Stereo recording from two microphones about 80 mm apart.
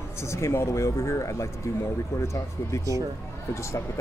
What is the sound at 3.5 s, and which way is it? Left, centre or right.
Speech, left.